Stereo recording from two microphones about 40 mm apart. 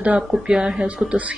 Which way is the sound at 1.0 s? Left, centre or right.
Right.